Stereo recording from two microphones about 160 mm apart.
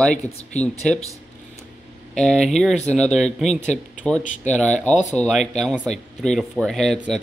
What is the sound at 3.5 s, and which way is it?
Speech, 45° left (ahead or behind).